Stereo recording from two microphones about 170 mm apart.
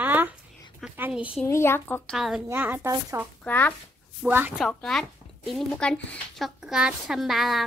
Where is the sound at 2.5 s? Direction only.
10° right (ahead or behind).